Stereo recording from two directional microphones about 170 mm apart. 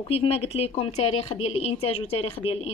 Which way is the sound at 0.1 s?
35° left (ahead or behind).